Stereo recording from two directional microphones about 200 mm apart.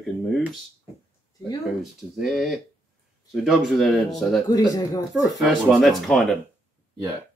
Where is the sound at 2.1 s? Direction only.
Centre (ahead or behind).